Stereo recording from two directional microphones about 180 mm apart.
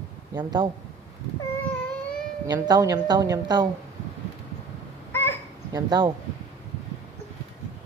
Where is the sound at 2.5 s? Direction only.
20° right (ahead or behind).